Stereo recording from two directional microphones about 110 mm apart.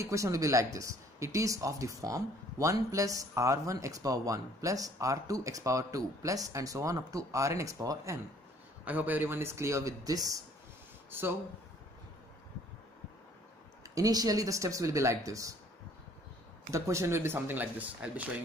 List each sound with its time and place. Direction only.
0.0 s speech: 30° right (ahead or behind)
8.8 s speech: 15° right (ahead or behind); by 10.4 s 35° right (ahead or behind)
11.1 s speech: 20° right (ahead or behind)
13.9 s speech: 35° right (ahead or behind)
16.7 s speech: 25° right (ahead or behind)